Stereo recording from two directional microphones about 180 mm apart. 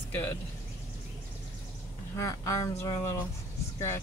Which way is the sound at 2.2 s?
15° left (ahead or behind).